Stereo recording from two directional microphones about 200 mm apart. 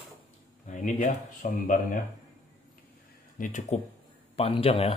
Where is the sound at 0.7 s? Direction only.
40° left (ahead or behind).